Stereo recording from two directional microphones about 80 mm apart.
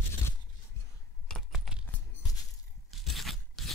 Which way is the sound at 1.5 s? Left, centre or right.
Centre.